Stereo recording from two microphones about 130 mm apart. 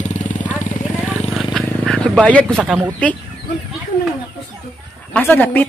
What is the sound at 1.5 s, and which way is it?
Vehicle, 5° left (ahead or behind).